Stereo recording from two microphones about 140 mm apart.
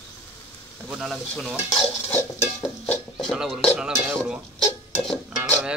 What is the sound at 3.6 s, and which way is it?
Speech, 5° right (ahead or behind).